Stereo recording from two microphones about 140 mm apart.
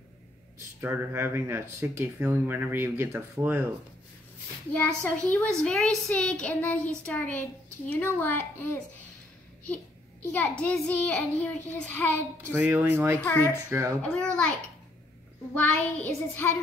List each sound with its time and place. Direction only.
0.7 s speech: 15° right (ahead or behind)
4.7 s a woman's voice: 10° left (ahead or behind)
10.3 s a woman's voice: 10° left (ahead or behind)
12.4 s speech: 15° right (ahead or behind)
13.2 s a woman's voice: 15° left (ahead or behind)
13.7 s speech: 15° right (ahead or behind)
14.0 s a woman's voice: 10° left (ahead or behind)
15.5 s a woman's voice: 15° left (ahead or behind)